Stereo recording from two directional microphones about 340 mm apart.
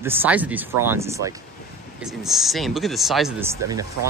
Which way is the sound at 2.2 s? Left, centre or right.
Centre.